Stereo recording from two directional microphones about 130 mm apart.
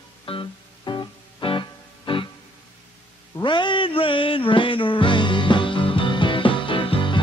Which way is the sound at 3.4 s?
40° left (ahead or behind).